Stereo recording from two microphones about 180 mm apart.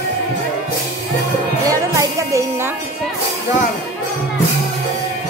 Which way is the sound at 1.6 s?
20° right (ahead or behind).